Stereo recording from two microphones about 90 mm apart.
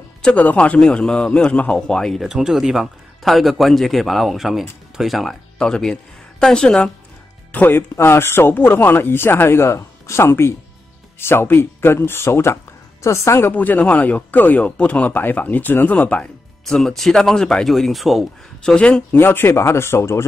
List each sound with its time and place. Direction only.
0.2 s a man's voice: 10° left (ahead or behind)
2.2 s a man's voice: 5° right (ahead or behind)
7.5 s a woman's voice: 20° left (ahead or behind)
13.5 s a man's voice: 20° left (ahead or behind)
19.1 s speech: 25° left (ahead or behind)